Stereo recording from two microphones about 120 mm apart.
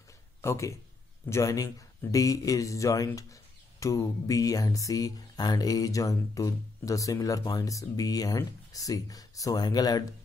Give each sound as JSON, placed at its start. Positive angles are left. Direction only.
{"t": 0.4, "sound": "a man's voice", "side_deg": 25}